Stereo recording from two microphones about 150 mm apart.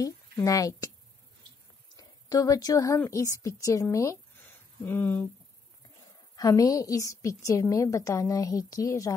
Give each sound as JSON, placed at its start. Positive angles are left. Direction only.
{"t": 0.0, "sound": "a woman's voice", "side_deg": 25}
{"t": 2.0, "sound": "a woman's voice", "side_deg": 25}
{"t": 6.3, "sound": "a woman's voice", "side_deg": 25}